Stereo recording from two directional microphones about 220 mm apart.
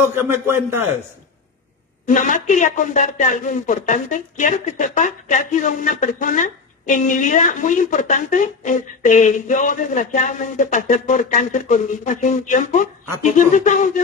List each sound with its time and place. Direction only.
0.0 s speech: 10° right (ahead or behind)
2.0 s speech: 35° left (ahead or behind)